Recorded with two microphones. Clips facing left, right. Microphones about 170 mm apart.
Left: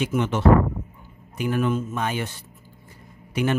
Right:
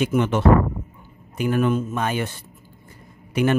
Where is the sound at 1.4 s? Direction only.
55° right (ahead or behind).